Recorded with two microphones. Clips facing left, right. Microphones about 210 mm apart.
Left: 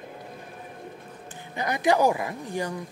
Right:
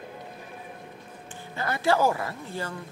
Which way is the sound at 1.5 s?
15° left (ahead or behind).